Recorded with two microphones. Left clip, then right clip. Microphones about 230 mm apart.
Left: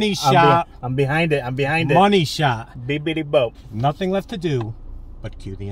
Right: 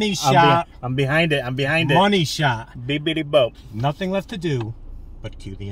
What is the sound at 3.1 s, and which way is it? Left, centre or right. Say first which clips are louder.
Speech: right 1 dB; right.